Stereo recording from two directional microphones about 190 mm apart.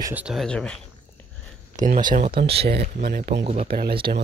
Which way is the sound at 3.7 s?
55° right (ahead or behind).